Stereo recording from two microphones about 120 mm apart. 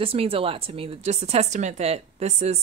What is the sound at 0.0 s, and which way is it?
Speech, 50° right (ahead or behind).